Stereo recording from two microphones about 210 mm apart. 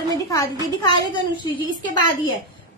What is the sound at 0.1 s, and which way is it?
A woman's voice, 15° left (ahead or behind).